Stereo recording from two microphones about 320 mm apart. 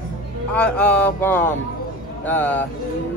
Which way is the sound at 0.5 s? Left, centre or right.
Centre.